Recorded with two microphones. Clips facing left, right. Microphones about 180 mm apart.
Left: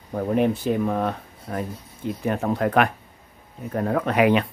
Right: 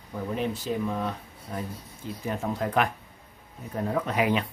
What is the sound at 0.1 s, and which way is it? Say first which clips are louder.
Speech: left 8 dB; 55° left (ahead or behind).